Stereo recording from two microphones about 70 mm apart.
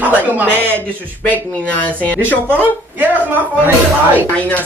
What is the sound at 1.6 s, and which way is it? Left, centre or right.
Speech, left.